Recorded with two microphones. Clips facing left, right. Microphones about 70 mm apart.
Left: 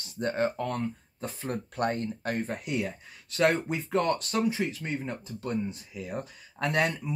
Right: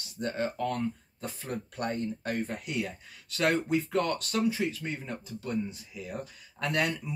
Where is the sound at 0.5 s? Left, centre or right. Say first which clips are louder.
Even; left.